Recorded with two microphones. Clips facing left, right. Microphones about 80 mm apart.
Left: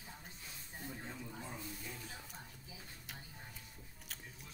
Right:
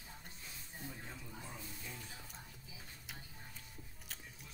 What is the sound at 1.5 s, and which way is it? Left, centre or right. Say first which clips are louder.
Music: left 3 dB; left.